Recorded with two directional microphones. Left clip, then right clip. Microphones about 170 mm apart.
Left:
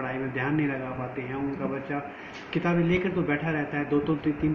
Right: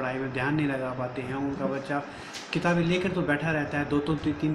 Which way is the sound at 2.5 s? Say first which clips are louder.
Even; 15° right (ahead or behind).